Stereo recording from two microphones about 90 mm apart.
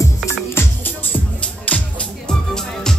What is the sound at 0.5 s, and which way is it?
Music, 20° left (ahead or behind).